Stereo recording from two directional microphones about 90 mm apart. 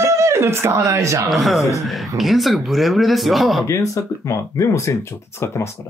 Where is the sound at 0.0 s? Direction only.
35° right (ahead or behind).